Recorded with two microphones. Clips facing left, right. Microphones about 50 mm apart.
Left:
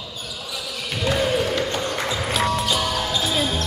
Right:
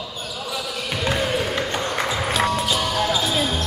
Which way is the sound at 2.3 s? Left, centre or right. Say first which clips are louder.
Left 1 dB; centre.